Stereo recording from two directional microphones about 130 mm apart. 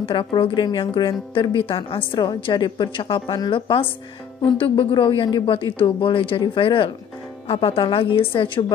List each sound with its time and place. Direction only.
0.0 s speech: 40° left (ahead or behind)